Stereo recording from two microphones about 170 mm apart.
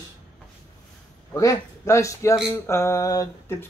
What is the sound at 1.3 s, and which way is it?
Speech, 20° left (ahead or behind).